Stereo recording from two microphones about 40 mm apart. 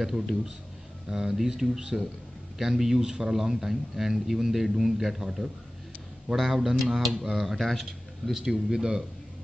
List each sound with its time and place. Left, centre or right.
1.0 s a man's voice: centre
8.4 s a man's voice: centre